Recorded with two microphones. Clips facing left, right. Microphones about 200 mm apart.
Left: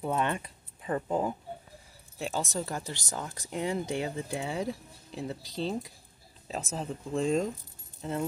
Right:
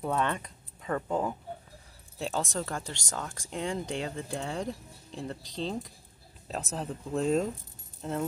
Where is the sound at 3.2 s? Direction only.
20° left (ahead or behind).